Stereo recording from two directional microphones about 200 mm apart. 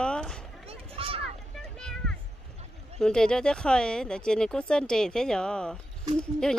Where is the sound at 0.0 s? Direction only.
5° left (ahead or behind).